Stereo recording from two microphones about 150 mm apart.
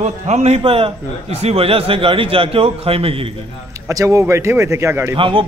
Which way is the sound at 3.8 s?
20° right (ahead or behind).